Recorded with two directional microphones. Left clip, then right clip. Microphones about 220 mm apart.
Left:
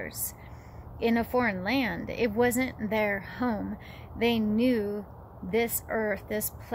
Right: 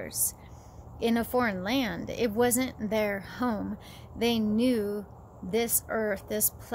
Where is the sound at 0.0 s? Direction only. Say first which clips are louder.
Right 2 dB; 10° right (ahead or behind).